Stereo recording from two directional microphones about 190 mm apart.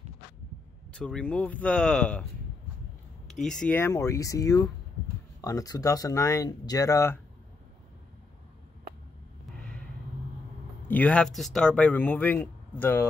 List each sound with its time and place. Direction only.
0.9 s speech: 5° left (ahead or behind)
3.3 s speech: 5° left (ahead or behind)
10.9 s speech: 10° left (ahead or behind)